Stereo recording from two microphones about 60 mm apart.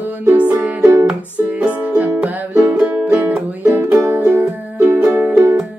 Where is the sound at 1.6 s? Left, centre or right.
Right.